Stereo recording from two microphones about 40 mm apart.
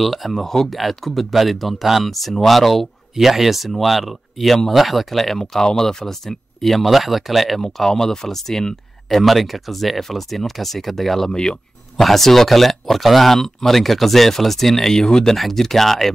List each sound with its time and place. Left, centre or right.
0.0 s speech: centre
5.4 s speech: centre
7.6 s speech: centre
11.3 s speech: centre
12.0 s speech: centre
15.3 s speech: centre